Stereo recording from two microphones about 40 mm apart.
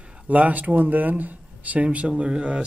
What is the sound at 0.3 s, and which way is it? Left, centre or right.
Speech, right.